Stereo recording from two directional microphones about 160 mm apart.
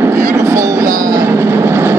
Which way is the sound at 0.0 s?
15° right (ahead or behind).